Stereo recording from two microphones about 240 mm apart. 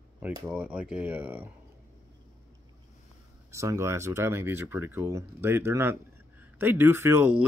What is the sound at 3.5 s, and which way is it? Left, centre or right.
Speech, centre.